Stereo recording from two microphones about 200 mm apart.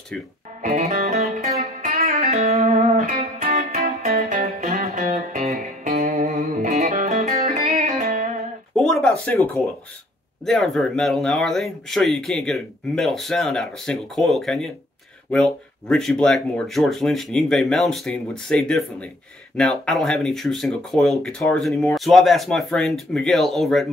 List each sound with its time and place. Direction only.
0.6 s music: 35° right (ahead or behind)
3.2 s music: 50° right (ahead or behind)
8.7 s a sound: centre (ahead or behind)
10.4 s speech: centre (ahead or behind)